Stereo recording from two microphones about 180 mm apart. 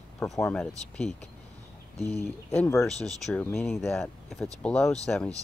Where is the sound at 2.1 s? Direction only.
10° left (ahead or behind).